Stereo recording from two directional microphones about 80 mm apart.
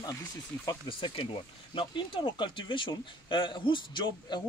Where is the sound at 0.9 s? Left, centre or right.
Left.